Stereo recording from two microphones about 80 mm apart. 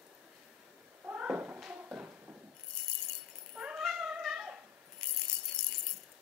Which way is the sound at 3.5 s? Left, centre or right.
Centre.